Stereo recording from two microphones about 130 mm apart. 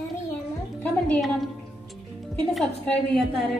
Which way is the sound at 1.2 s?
Centre (ahead or behind).